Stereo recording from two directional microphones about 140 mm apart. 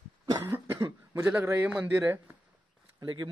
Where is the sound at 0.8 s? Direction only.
25° right (ahead or behind).